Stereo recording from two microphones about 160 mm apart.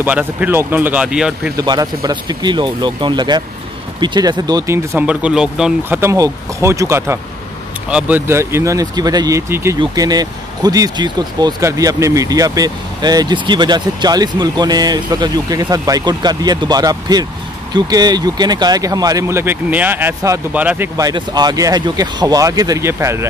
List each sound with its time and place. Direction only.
0.0 s speech: 10° right (ahead or behind)
1.6 s speech: 25° right (ahead or behind)
4.9 s speech: 5° right (ahead or behind)
5.9 s speech: 20° right (ahead or behind)
21.0 s speech: 25° right (ahead or behind)